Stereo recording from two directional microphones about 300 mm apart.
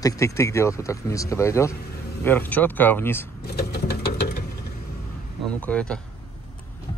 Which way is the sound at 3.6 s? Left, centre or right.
Left.